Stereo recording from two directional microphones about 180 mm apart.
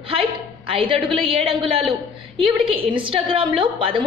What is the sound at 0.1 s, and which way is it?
A woman's voice, 30° right (ahead or behind).